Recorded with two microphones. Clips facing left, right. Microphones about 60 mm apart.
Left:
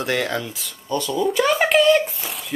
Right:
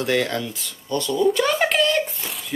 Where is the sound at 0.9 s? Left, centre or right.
Centre.